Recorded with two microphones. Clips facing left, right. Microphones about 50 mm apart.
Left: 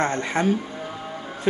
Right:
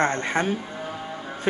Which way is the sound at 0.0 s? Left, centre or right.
Right.